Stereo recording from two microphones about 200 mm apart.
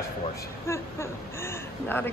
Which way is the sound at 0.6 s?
15° left (ahead or behind).